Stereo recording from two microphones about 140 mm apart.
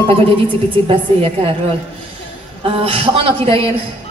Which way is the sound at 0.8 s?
40° right (ahead or behind).